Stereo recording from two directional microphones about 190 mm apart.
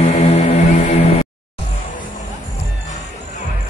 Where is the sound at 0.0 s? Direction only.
35° left (ahead or behind).